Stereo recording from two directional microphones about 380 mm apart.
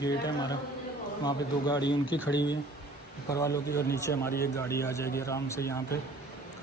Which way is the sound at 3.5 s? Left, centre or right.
Left.